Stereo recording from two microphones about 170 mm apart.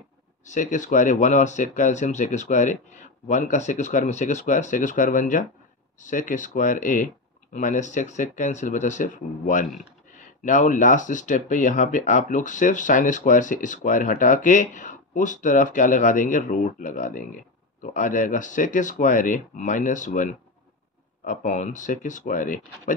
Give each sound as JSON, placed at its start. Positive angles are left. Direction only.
{"t": 0.5, "sound": "speech", "side_deg": 45}